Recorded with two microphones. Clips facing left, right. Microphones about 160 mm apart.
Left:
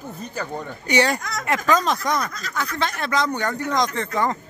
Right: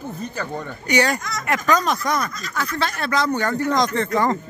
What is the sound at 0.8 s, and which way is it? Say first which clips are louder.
Speech: even; 25° left (ahead or behind).